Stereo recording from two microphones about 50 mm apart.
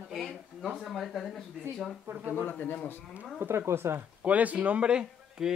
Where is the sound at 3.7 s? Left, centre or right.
Right.